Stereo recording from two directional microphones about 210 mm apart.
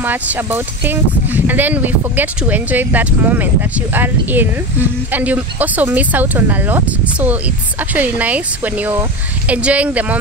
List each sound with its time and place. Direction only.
0.0 s speech: 10° right (ahead or behind)